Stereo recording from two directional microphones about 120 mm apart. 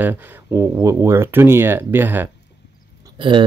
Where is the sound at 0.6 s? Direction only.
20° right (ahead or behind).